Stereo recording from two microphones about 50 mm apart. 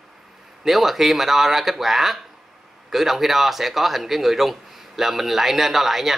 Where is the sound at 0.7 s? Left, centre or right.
Centre.